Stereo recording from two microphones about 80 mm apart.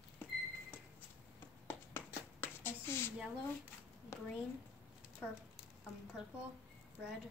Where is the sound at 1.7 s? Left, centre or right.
Left.